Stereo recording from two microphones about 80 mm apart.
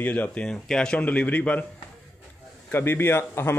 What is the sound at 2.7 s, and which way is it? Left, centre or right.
Speech, left.